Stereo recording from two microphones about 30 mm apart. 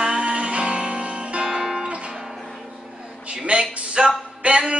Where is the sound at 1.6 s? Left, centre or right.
Centre.